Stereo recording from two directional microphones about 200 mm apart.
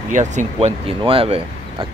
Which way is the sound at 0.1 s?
40° right (ahead or behind).